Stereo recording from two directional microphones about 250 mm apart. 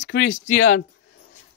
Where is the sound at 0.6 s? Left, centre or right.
Left.